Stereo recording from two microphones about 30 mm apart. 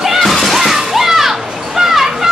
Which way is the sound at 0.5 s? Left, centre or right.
Centre.